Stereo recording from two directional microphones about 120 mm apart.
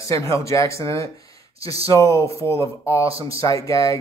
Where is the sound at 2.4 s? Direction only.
20° right (ahead or behind).